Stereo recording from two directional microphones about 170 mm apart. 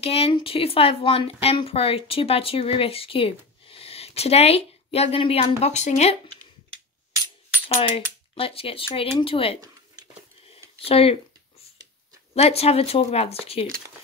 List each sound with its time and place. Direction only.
0.0 s speech: 35° left (ahead or behind)
7.6 s speech: 35° left (ahead or behind)
10.5 s a sound: 35° left (ahead or behind)
12.4 s speech: 35° left (ahead or behind)